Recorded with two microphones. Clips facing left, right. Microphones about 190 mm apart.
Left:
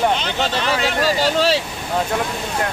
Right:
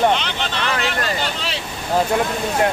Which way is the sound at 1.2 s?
40° left (ahead or behind).